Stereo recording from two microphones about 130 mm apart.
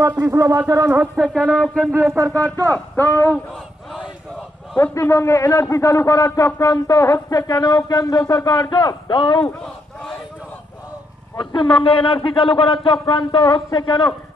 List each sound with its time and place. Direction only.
0.1 s speech: 20° right (ahead or behind)
0.8 s speech: 10° right (ahead or behind)
1.2 s a sound: 5° left (ahead or behind)
1.9 s speech: 5° right (ahead or behind)
2.1 s speech: 25° right (ahead or behind)
2.4 s speech: 15° left (ahead or behind)
4.7 s a man's voice: 20° left (ahead or behind); by 9.4 s 40° left (ahead or behind)
11.3 s speech: 40° left (ahead or behind)